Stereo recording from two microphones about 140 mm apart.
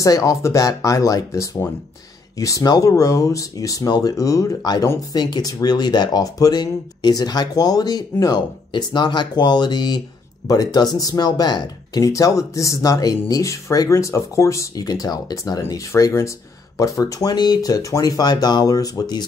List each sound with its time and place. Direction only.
0.0 s speech: 25° left (ahead or behind)